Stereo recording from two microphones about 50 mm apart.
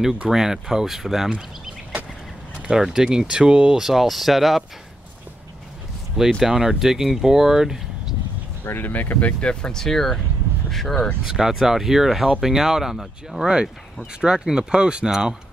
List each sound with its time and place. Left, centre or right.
0.3 s speech: centre
2.6 s speech: centre
3.8 s speech: centre
6.4 s speech: centre
8.6 s speech: left
9.4 s speech: centre
11.3 s speech: centre
13.5 s speech: centre